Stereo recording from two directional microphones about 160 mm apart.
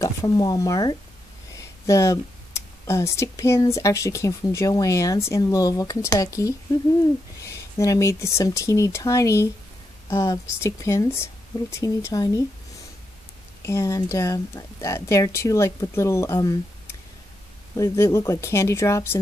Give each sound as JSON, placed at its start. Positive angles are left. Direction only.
{"t": 0.0, "sound": "speech", "side_deg": 20}
{"t": 1.6, "sound": "a sound", "side_deg": 20}
{"t": 2.9, "sound": "speech", "side_deg": 15}
{"t": 13.6, "sound": "speech", "side_deg": 20}
{"t": 17.7, "sound": "speech", "side_deg": 20}